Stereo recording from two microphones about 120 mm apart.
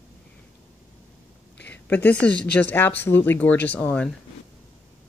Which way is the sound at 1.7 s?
15° left (ahead or behind).